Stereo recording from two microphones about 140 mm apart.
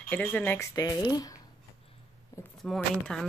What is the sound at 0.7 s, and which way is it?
Speech, 25° left (ahead or behind).